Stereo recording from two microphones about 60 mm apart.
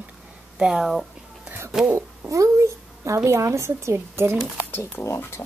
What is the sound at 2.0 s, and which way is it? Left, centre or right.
Speech, right.